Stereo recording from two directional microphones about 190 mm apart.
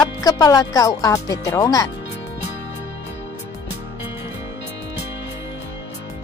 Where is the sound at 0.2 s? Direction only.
20° left (ahead or behind).